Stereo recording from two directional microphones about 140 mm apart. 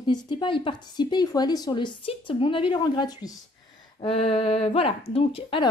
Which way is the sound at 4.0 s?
45° left (ahead or behind).